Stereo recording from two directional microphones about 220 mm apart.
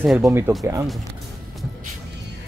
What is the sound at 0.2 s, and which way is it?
Speech, 10° right (ahead or behind).